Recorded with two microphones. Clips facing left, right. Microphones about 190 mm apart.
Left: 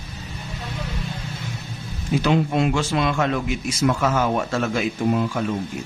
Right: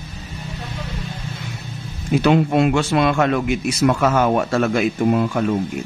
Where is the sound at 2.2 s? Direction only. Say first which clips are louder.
Right 4 dB; 60° right (ahead or behind).